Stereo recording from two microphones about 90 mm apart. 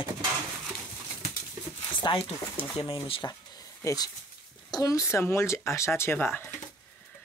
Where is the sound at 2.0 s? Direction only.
75° left (ahead or behind).